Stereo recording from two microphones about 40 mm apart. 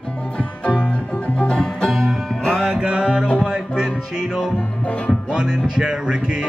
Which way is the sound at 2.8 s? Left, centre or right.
Right.